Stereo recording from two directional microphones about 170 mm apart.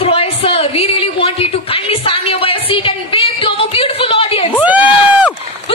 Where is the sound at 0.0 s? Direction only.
35° left (ahead or behind).